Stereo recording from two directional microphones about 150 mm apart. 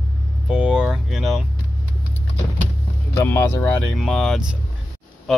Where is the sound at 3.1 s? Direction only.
15° left (ahead or behind).